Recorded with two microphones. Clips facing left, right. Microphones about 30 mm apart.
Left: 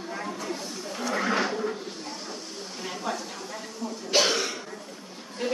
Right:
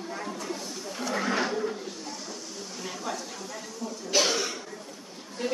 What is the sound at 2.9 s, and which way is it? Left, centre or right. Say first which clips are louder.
Speech: left 3 dB; left.